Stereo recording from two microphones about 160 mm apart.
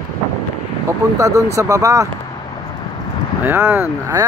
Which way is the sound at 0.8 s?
20° right (ahead or behind).